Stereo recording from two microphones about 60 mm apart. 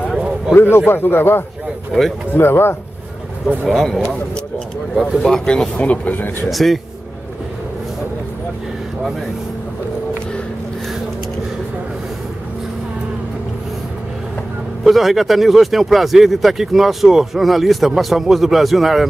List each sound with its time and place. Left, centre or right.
0.5 s a man's voice: left
1.9 s speech: centre
2.3 s a man's voice: left
3.7 s speech: centre
5.2 s speech: centre
5.8 s speech: left
6.5 s speech: centre
14.9 s speech: centre